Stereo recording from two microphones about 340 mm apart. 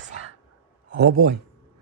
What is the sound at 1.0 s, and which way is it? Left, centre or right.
Speech, right.